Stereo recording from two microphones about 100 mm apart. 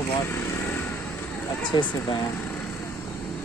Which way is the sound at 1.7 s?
50° left (ahead or behind).